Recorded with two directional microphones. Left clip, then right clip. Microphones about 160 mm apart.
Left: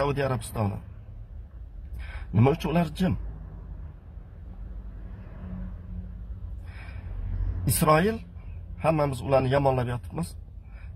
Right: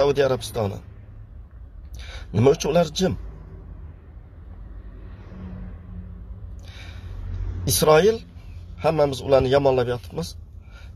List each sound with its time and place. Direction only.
0.0 s a man's voice: centre (ahead or behind)
2.0 s speech: centre (ahead or behind)
7.6 s a man's voice: centre (ahead or behind)